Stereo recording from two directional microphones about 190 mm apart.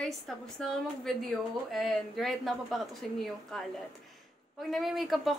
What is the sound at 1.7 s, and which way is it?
Speech, centre (ahead or behind).